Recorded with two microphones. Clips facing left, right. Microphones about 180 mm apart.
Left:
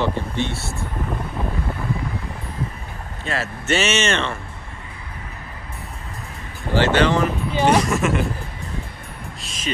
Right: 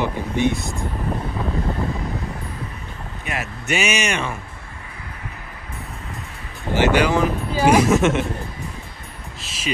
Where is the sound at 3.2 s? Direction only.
15° right (ahead or behind).